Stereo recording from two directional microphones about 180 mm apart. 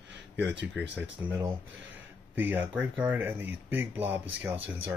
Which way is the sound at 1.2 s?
15° right (ahead or behind).